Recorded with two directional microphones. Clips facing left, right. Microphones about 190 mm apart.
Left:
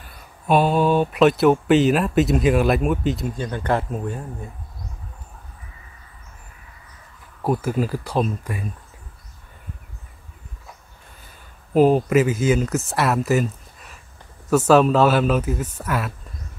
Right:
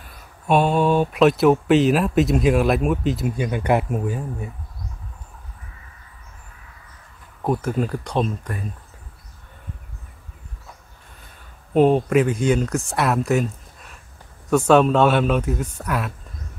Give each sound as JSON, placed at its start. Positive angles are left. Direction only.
{"t": 0.0, "sound": "speech", "side_deg": 0}
{"t": 7.4, "sound": "speech", "side_deg": 5}
{"t": 11.7, "sound": "speech", "side_deg": 5}